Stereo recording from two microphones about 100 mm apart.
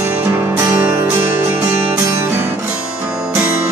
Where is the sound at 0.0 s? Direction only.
20° right (ahead or behind).